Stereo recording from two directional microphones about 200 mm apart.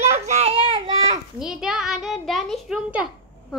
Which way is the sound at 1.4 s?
5° right (ahead or behind).